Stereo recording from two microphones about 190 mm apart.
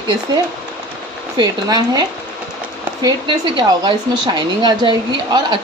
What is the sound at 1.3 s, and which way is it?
A woman's voice, 20° right (ahead or behind).